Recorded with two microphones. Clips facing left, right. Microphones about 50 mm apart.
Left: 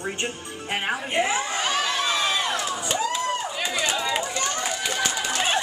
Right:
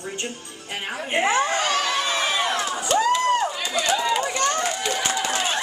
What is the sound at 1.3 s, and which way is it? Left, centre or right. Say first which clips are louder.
Speech: right 5 dB; right.